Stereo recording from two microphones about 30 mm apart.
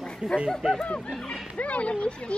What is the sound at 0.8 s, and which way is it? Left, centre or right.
Speech, left.